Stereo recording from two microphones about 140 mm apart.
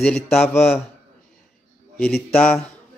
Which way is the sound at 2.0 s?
Centre (ahead or behind).